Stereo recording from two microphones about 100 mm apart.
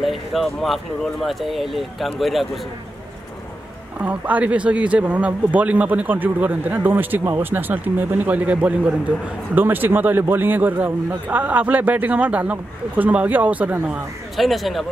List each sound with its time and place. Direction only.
0.0 s speech: centre (ahead or behind)
4.0 s speech: 15° right (ahead or behind)
14.3 s speech: centre (ahead or behind)